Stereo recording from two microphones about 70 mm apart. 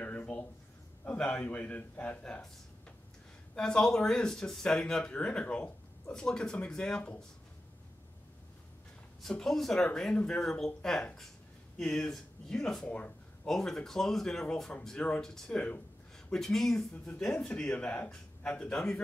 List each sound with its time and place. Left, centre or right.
0.0 s a sound: left
1.1 s a man's voice: centre
3.5 s speech: centre
9.3 s speech: centre
12.8 s a man's voice: centre
13.5 s speech: centre